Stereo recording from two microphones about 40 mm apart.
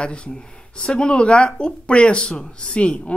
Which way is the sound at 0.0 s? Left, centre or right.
Left.